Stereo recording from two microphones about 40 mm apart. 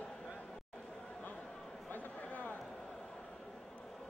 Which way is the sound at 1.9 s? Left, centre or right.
Left.